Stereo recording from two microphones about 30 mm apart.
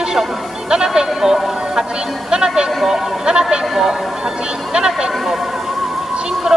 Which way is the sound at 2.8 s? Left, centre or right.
Centre.